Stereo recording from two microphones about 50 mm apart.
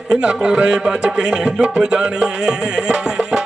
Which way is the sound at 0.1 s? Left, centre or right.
Centre.